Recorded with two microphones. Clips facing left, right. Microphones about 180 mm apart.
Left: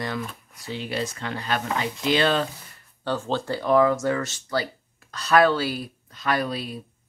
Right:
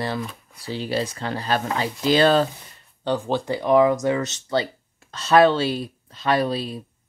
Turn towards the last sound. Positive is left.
turn(degrees=-30)  # may be behind; listen again after turning